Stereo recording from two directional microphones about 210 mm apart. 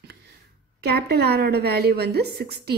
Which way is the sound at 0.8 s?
50° right (ahead or behind).